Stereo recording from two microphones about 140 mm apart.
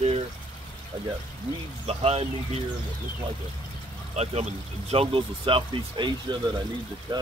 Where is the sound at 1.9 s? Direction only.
45° right (ahead or behind).